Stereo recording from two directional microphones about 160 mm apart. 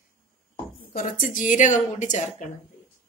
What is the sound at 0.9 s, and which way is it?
A woman's voice, 60° left (ahead or behind).